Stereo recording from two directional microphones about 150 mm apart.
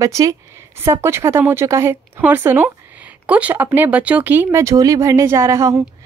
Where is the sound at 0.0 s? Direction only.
20° right (ahead or behind).